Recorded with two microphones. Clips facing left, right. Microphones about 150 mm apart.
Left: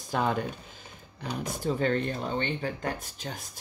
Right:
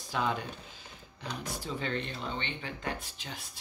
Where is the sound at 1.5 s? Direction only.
50° left (ahead or behind).